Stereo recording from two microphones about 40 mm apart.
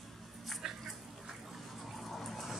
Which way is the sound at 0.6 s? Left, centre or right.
Centre.